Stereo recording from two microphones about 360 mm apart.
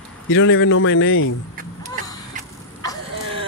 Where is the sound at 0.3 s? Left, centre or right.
Left.